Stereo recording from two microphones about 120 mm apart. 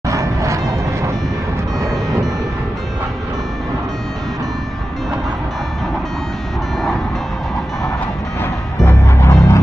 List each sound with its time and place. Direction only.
0.1 s vehicle: 25° right (ahead or behind)
8.4 s music: 20° left (ahead or behind)